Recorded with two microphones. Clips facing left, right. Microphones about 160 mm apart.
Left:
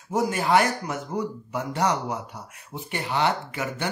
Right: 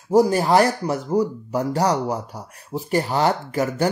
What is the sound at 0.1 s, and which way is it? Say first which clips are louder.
Speech: right 6 dB; 35° right (ahead or behind).